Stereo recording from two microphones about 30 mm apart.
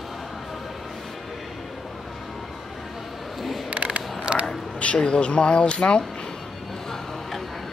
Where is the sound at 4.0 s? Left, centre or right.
Right.